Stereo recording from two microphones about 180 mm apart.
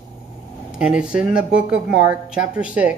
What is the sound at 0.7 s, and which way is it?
Speech, 5° right (ahead or behind).